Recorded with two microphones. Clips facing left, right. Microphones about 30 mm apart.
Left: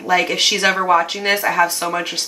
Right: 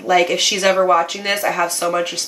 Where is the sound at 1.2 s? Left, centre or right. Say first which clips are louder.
Left 2 dB; left.